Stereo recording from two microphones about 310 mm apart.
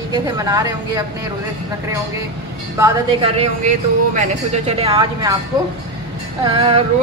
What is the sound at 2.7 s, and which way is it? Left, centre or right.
A woman's voice, centre.